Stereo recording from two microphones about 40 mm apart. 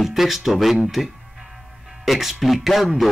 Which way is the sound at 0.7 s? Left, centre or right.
Centre.